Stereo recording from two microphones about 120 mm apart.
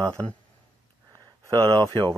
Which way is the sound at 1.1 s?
30° right (ahead or behind).